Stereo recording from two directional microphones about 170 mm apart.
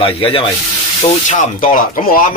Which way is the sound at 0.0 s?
30° left (ahead or behind).